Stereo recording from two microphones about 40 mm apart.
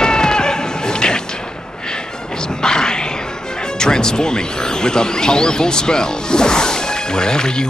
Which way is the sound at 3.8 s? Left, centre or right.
Centre.